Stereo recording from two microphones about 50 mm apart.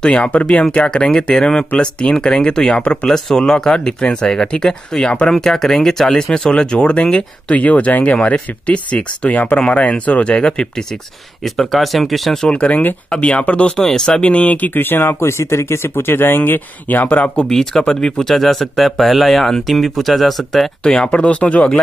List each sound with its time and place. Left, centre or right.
0.0 s speech: left
3.1 s speech: centre
11.7 s speech: centre
12.4 s speech: left
13.8 s speech: centre
14.2 s speech: left
15.0 s speech: left
15.9 s speech: left
17.5 s speech: centre
20.8 s speech: centre